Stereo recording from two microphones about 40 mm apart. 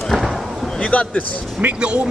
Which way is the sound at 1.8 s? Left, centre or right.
Right.